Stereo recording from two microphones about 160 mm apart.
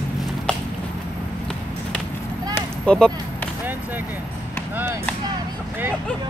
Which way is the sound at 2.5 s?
5° left (ahead or behind).